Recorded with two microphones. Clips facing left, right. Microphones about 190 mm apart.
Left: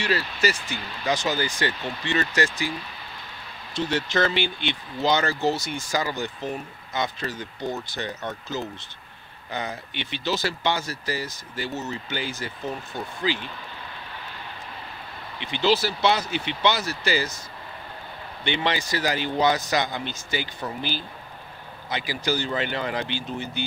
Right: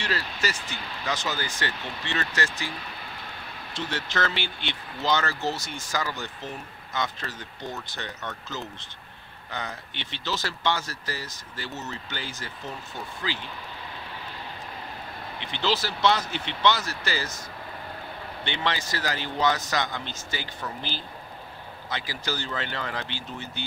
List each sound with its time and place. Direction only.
0.0 s speech: 10° left (ahead or behind)
3.7 s speech: 15° left (ahead or behind)
15.5 s speech: 10° left (ahead or behind)
18.4 s speech: 15° left (ahead or behind)
21.8 s speech: 15° left (ahead or behind)